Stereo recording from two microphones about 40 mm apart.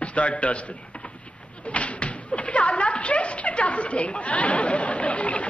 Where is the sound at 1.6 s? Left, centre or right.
Left.